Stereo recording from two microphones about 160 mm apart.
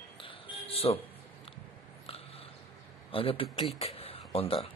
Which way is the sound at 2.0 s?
40° left (ahead or behind).